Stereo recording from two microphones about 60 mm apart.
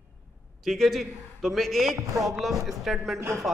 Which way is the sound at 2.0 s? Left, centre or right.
Right.